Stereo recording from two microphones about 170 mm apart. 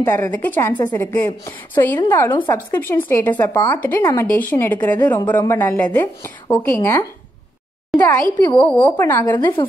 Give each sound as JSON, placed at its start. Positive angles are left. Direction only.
{"t": 0.0, "sound": "speech", "side_deg": 10}
{"t": 4.0, "sound": "speech", "side_deg": 20}
{"t": 4.3, "sound": "speech", "side_deg": 10}